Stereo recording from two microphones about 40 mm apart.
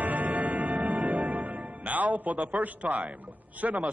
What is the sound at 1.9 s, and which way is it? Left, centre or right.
A man's voice, right.